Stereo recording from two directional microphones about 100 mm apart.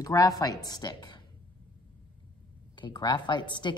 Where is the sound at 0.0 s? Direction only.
35° left (ahead or behind).